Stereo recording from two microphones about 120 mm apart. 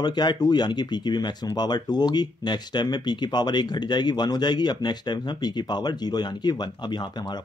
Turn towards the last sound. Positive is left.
turn(degrees=40)  # may be behind; listen again after turning